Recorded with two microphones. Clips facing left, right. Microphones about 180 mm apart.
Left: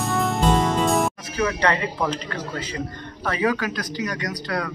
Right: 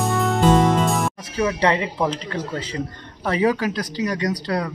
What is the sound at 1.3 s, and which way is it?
Speech, 25° right (ahead or behind).